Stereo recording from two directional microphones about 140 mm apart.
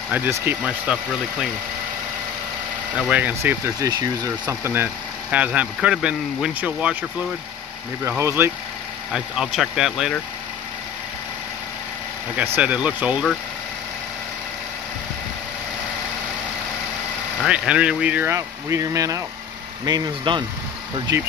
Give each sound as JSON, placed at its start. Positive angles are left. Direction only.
{"t": 0.1, "sound": "speech", "side_deg": -15}
{"t": 3.0, "sound": "speech", "side_deg": -10}
{"t": 8.0, "sound": "speech", "side_deg": -20}
{"t": 9.1, "sound": "speech", "side_deg": -5}
{"t": 12.5, "sound": "speech", "side_deg": -10}
{"t": 17.4, "sound": "speech", "side_deg": -5}